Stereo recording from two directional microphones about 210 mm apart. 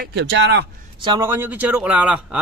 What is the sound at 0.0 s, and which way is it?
Speech, 55° right (ahead or behind).